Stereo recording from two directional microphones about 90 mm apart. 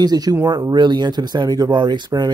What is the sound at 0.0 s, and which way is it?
Speech, 45° right (ahead or behind).